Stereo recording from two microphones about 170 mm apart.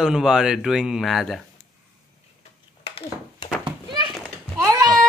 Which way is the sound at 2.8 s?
35° left (ahead or behind).